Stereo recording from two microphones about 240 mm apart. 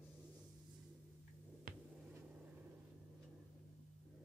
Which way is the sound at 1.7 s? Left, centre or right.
Right.